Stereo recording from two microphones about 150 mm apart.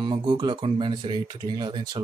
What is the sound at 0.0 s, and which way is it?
Speech, 30° right (ahead or behind).